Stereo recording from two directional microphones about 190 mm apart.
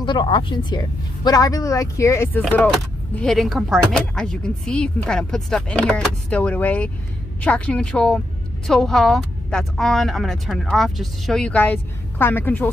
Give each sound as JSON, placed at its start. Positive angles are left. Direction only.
{"t": 0.0, "sound": "speech", "side_deg": 25}